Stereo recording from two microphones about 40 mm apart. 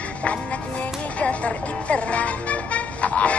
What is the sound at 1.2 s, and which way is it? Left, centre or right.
Music, left.